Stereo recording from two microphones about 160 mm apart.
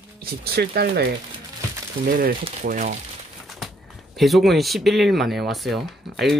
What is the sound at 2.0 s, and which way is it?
Speech, 65° right (ahead or behind).